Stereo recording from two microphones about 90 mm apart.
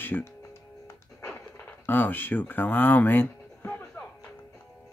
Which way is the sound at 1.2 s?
15° left (ahead or behind).